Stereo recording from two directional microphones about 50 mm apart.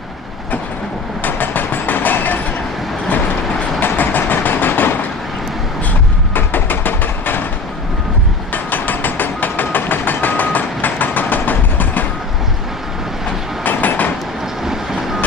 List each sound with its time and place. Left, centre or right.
1.2 s a sound: left
3.8 s vehicle: left
6.3 s a sound: left
8.6 s hammer: left
13.7 s vehicle: left
14.6 s vehicle: centre